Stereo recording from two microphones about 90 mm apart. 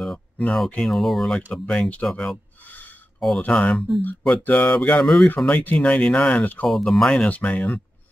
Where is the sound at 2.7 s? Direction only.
20° left (ahead or behind).